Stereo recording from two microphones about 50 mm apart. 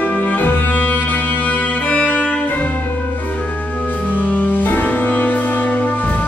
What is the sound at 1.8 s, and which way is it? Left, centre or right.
Music, left.